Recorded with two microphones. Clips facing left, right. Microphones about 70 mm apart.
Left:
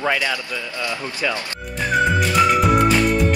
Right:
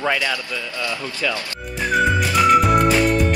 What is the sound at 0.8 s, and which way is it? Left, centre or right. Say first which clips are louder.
Speech: even; left.